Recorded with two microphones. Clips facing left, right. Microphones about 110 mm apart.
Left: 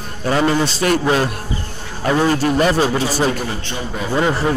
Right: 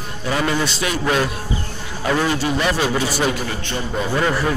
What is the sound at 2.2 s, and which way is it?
Speech, 40° left (ahead or behind).